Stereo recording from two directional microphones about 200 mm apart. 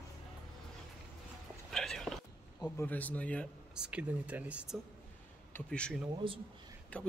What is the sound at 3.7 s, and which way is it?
Speech, 5° right (ahead or behind).